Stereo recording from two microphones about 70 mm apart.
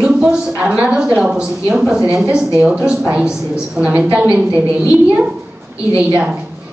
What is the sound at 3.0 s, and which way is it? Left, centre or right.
A woman's voice, centre.